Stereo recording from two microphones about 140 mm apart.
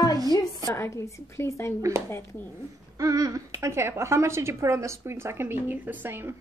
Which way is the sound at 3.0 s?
25° right (ahead or behind).